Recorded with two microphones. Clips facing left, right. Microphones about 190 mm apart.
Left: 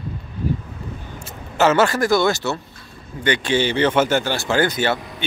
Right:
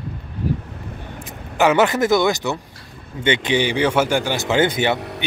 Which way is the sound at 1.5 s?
15° right (ahead or behind).